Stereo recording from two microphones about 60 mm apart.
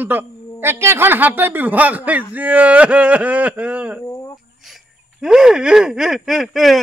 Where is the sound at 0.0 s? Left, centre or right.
Right.